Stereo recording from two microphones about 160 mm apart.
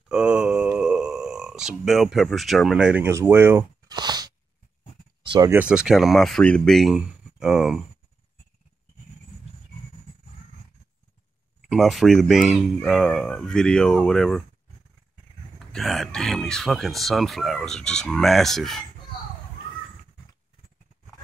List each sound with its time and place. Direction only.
0.1 s a sound: 5° right (ahead or behind)
3.9 s crunch: 25° right (ahead or behind)
5.2 s a sound: 30° right (ahead or behind)
5.5 s speech: 5° right (ahead or behind)
11.6 s speech: centre (ahead or behind)
15.7 s speech: centre (ahead or behind)